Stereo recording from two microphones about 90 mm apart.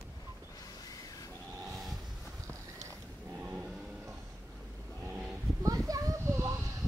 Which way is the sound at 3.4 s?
15° right (ahead or behind).